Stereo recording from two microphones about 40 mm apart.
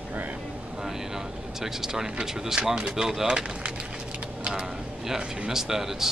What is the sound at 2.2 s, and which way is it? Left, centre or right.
Speech, centre.